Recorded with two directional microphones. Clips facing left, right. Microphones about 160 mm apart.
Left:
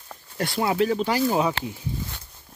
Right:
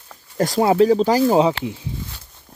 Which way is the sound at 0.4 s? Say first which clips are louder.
Right 8 dB; 35° right (ahead or behind).